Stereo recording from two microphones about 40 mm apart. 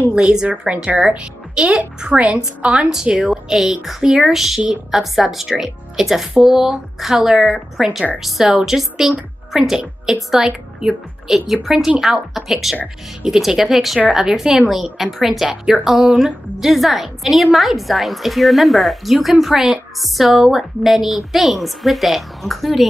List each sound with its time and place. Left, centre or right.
0.1 s a woman's voice: right
3.3 s a woman's voice: centre; by 16.3 s right
16.5 s a woman's voice: centre